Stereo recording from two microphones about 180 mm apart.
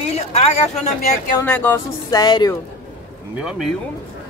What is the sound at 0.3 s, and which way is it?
Speech, 35° left (ahead or behind).